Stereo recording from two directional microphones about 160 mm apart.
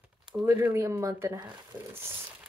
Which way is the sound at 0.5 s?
15° right (ahead or behind).